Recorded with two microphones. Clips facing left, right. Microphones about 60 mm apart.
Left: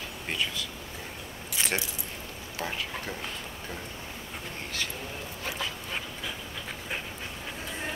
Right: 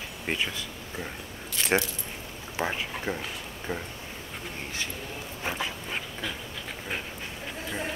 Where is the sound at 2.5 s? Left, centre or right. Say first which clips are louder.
Right 4 dB; right.